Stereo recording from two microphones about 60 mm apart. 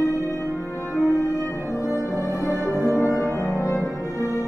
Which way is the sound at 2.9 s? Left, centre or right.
Left.